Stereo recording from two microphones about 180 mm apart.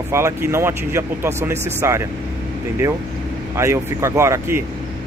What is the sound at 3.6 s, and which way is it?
Speech, 15° right (ahead or behind).